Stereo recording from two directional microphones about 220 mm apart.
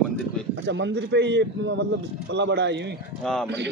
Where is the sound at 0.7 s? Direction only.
55° right (ahead or behind).